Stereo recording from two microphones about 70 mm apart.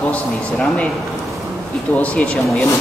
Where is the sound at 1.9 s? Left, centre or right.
Centre.